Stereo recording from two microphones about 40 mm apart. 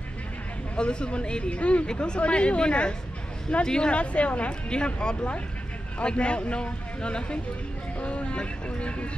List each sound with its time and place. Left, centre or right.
0.7 s speech: left